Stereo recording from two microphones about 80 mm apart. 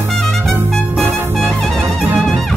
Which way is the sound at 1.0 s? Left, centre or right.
Right.